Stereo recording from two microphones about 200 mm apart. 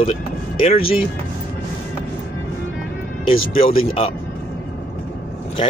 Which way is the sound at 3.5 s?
45° left (ahead or behind).